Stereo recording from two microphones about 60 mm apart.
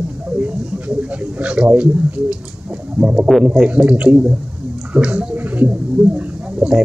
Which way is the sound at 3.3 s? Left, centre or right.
Centre.